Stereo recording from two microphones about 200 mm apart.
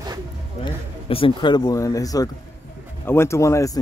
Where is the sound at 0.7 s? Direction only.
25° left (ahead or behind).